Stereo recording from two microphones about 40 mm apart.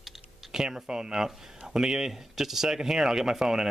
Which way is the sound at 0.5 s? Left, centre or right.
Centre.